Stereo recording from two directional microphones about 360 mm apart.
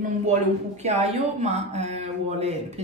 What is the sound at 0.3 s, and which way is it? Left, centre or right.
Speech, centre.